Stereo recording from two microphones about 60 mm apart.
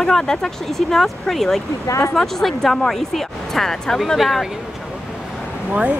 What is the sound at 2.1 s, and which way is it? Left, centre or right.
Speech, centre.